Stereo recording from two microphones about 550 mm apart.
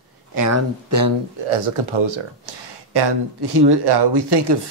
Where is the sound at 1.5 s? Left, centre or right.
Right.